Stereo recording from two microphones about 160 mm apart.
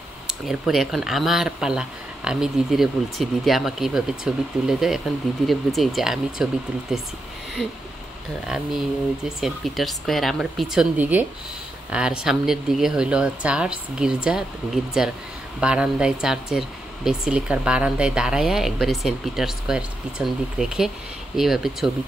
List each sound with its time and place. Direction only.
0.3 s speech: centre (ahead or behind)
9.4 s speech: centre (ahead or behind)